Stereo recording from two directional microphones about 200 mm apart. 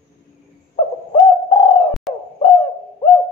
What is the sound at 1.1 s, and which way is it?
Bird, 30° left (ahead or behind).